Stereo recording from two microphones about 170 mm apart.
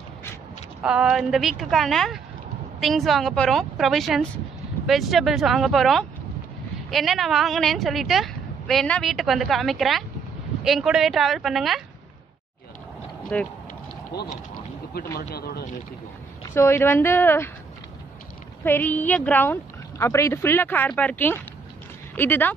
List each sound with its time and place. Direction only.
0.8 s a woman's voice: 5° right (ahead or behind)
13.3 s a woman's voice: 10° left (ahead or behind)
15.1 s speech: 65° left (ahead or behind)
16.5 s a woman's voice: 15° left (ahead or behind)
18.6 s a woman's voice: 10° left (ahead or behind)